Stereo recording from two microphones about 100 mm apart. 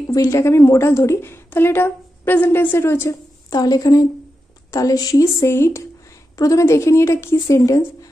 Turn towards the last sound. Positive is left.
turn(degrees=30)  # may be behind; listen again after turning